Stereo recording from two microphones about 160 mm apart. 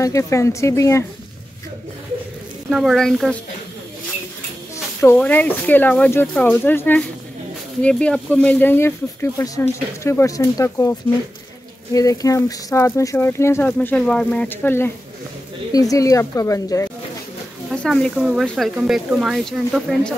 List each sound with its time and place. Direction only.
0.0 s speech: 20° left (ahead or behind)
2.7 s speech: centre (ahead or behind)
5.0 s speech: 10° left (ahead or behind)
17.6 s speech: centre (ahead or behind)